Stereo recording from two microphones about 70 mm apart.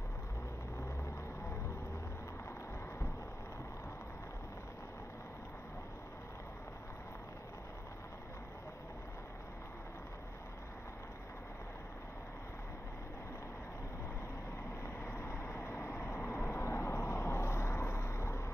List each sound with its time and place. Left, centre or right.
15.0 s vehicle: left